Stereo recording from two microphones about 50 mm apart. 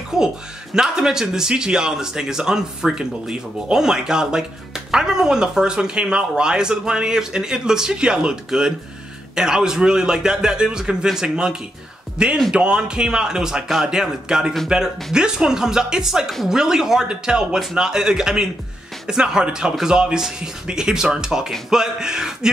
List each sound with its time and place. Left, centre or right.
0.1 s speech: centre